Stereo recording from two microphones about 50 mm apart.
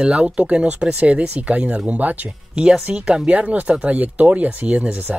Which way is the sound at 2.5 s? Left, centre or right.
Centre.